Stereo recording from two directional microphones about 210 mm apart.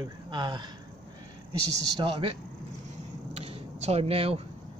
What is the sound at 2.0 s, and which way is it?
Speech, 25° right (ahead or behind).